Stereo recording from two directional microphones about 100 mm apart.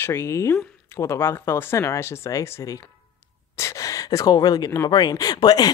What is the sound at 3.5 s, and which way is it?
Gasp, 30° left (ahead or behind).